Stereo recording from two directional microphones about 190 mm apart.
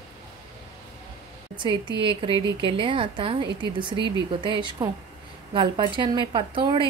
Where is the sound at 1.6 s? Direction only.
25° right (ahead or behind).